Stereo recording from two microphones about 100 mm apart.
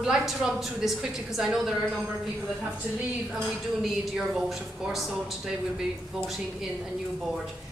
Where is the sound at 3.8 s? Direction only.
5° right (ahead or behind).